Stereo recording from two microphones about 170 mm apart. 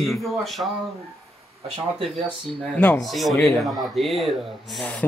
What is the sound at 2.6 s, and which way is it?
Speech, 5° left (ahead or behind).